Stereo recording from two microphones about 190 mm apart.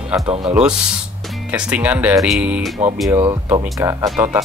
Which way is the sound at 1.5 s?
5° right (ahead or behind).